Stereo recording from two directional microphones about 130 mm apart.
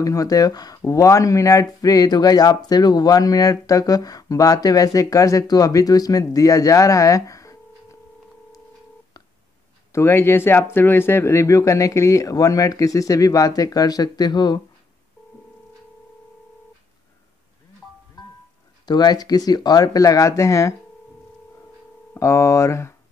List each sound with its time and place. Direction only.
0.0 s speech: 25° left (ahead or behind)
9.9 s speech: 20° left (ahead or behind)
18.9 s speech: 30° left (ahead or behind)
22.1 s speech: 25° left (ahead or behind)